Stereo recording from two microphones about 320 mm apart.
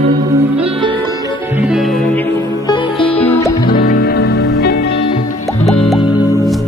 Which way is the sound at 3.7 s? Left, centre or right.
Left.